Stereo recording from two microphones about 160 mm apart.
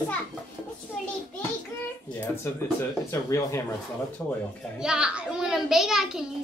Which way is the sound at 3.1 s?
20° left (ahead or behind).